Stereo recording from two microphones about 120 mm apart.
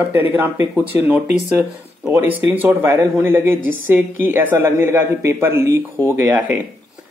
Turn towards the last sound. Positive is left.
turn(degrees=-20)  # may be behind; listen again after turning